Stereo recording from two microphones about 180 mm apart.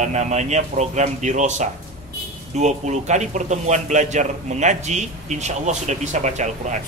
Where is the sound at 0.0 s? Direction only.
40° right (ahead or behind).